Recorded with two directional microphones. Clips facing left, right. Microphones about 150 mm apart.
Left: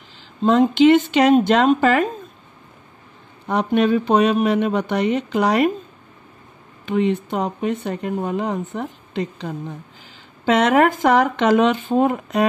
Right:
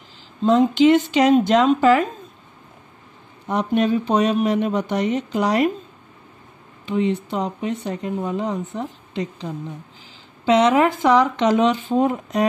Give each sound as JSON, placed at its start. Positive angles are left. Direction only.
{"t": 0.4, "sound": "speech", "side_deg": 65}
{"t": 3.4, "sound": "speech", "side_deg": 65}
{"t": 6.9, "sound": "speech", "side_deg": 55}